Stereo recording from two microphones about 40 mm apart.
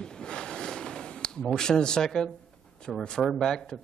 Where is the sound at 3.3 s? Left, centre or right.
Centre.